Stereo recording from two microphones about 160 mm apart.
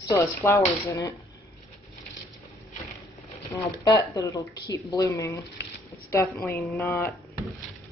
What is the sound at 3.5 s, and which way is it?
A woman's voice, 20° left (ahead or behind).